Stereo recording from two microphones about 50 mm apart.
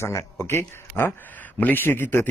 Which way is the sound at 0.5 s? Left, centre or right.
Left.